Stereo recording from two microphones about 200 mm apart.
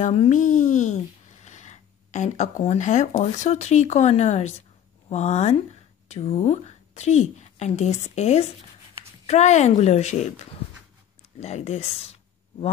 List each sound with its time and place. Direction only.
0.0 s a woman's voice: 35° left (ahead or behind)
11.3 s speech: 35° left (ahead or behind)